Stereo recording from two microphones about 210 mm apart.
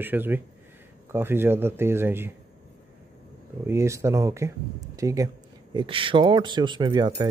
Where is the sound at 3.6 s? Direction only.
15° right (ahead or behind).